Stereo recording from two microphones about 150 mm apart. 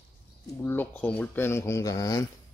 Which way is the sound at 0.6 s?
15° left (ahead or behind).